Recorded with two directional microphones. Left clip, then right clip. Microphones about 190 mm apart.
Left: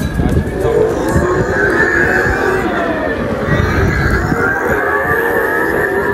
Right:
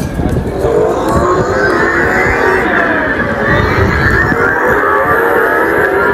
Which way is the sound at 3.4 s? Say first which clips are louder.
Right 6 dB; 30° right (ahead or behind).